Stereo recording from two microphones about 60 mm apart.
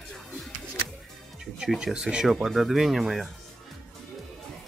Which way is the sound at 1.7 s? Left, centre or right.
Centre.